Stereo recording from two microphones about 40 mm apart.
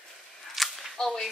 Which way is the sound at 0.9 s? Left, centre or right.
Centre.